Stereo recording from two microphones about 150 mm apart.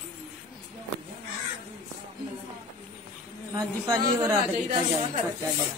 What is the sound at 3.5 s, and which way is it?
Speech, 25° right (ahead or behind).